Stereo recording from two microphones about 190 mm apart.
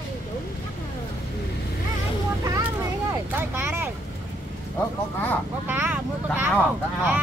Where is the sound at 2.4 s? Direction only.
15° right (ahead or behind).